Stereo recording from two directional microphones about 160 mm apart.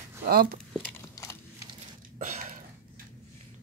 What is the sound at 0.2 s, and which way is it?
Speech, 70° right (ahead or behind).